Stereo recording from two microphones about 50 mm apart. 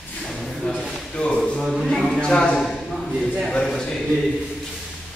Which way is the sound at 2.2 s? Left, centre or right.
Centre.